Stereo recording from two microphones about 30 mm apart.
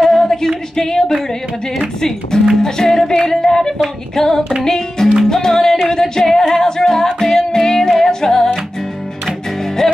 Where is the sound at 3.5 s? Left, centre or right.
Centre.